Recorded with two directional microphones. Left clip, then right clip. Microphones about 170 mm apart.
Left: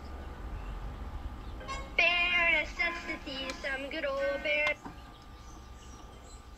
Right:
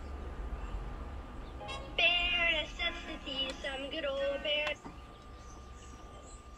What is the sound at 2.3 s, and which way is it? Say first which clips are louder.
Music: left 4 dB; 35° left (ahead or behind).